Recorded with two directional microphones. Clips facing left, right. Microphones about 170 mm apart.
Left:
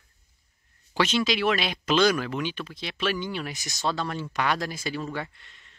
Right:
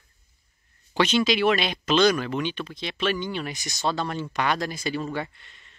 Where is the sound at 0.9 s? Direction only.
Centre (ahead or behind).